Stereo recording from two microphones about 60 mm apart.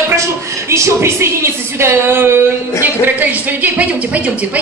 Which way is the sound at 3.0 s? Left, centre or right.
Right.